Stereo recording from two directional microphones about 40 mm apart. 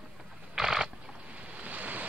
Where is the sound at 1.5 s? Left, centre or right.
Right.